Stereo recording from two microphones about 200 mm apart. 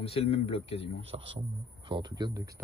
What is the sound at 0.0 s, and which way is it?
Speech, 30° left (ahead or behind).